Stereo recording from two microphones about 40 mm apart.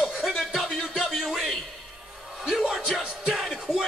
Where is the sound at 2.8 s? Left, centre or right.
Centre.